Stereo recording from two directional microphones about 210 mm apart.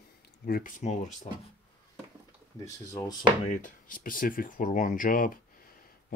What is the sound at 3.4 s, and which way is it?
Speech, 35° left (ahead or behind).